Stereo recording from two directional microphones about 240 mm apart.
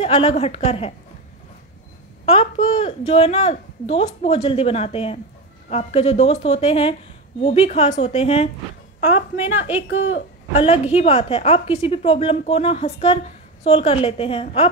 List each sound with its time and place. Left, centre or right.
0.0 s a woman's voice: left
2.2 s a woman's voice: left
9.4 s a woman's voice: centre
9.8 s speech: left
10.5 s a woman's voice: left